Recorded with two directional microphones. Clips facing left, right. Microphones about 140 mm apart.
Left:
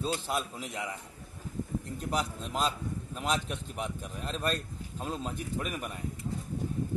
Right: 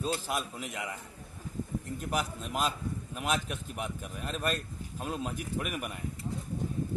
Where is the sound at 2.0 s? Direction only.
10° right (ahead or behind).